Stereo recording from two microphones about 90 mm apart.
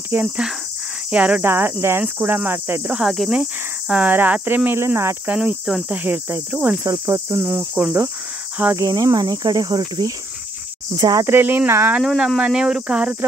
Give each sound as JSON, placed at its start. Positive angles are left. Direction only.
{"t": 0.1, "sound": "cricket", "side_deg": -25}
{"t": 1.1, "sound": "speech", "side_deg": -15}
{"t": 1.4, "sound": "cricket", "side_deg": -25}
{"t": 3.0, "sound": "speech", "side_deg": -5}
{"t": 3.9, "sound": "cricket", "side_deg": -15}
{"t": 5.3, "sound": "speech", "side_deg": -10}
{"t": 5.9, "sound": "cricket", "side_deg": -20}
{"t": 6.8, "sound": "cricket", "side_deg": -35}
{"t": 8.7, "sound": "cricket", "side_deg": -40}
{"t": 11.2, "sound": "cricket", "side_deg": -20}
{"t": 12.4, "sound": "speech", "side_deg": -5}